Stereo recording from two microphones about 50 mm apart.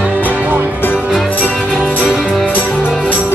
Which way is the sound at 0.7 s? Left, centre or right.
Left.